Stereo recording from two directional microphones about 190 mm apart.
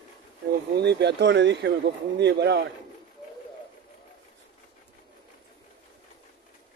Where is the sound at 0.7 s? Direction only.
65° right (ahead or behind).